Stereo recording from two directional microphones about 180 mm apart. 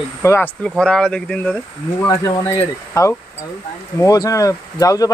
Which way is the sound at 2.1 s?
20° left (ahead or behind).